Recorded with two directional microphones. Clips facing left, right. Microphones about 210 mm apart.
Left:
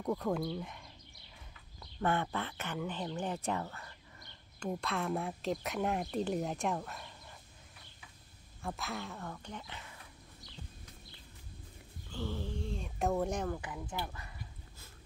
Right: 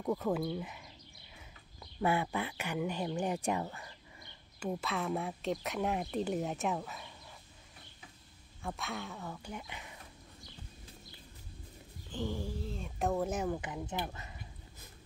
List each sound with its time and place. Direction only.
0.0 s speech: centre (ahead or behind)
2.0 s speech: 10° right (ahead or behind)
8.6 s speech: centre (ahead or behind)
12.1 s speech: 15° right (ahead or behind)
13.5 s speech: 20° right (ahead or behind)